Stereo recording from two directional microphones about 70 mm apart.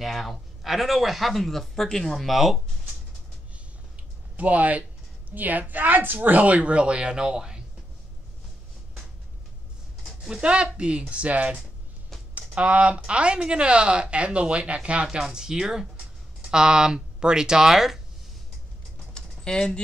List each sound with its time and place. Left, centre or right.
0.0 s speech: centre
4.4 s a woman's voice: right
10.0 s speech: centre
19.1 s typing: centre